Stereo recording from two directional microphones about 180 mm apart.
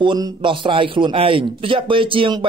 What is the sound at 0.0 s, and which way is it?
A man's voice, 25° right (ahead or behind).